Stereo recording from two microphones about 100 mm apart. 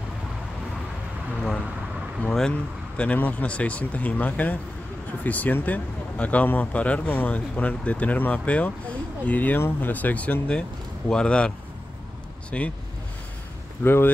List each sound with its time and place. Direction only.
2.2 s speech: 5° left (ahead or behind)
13.8 s speech: 20° left (ahead or behind)